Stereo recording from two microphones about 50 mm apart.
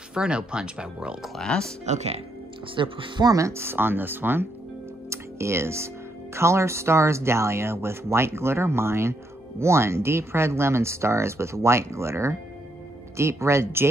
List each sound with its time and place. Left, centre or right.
0.1 s speech: centre
1.4 s speech: centre
3.3 s speech: right
3.6 s speech: right
5.1 s music: right
6.3 s speech: right